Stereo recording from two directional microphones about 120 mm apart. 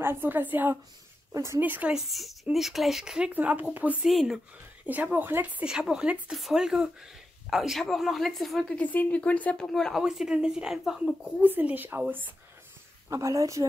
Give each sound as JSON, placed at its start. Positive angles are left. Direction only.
{"t": 0.0, "sound": "speech", "side_deg": -20}
{"t": 2.0, "sound": "a woman's voice", "side_deg": 0}
{"t": 4.8, "sound": "a woman's voice", "side_deg": -15}
{"t": 13.1, "sound": "speech", "side_deg": -25}